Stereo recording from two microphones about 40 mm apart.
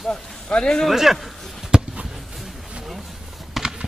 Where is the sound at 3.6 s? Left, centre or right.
Centre.